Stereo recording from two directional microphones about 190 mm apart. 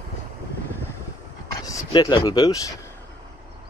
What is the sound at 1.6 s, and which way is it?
Speech, 20° left (ahead or behind).